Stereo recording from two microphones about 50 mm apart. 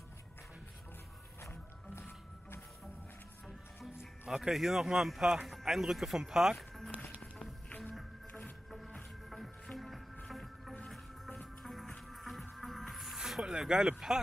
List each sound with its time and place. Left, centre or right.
1.4 s music: left
4.0 s speech: centre
8.3 s music: left
8.6 s music: centre
13.6 s speech: centre